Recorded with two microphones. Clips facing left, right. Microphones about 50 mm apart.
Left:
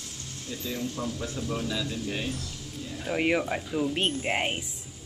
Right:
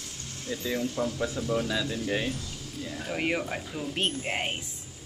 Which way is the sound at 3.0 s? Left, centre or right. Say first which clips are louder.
Left 4 dB; centre.